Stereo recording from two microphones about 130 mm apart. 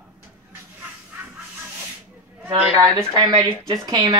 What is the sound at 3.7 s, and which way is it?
Speech, 30° right (ahead or behind).